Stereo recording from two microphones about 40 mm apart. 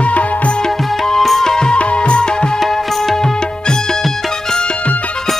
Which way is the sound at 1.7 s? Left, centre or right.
Left.